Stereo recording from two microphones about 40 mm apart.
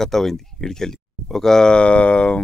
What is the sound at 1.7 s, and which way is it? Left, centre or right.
Speech, left.